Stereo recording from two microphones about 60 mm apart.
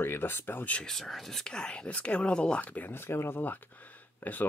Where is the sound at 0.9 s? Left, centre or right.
Centre.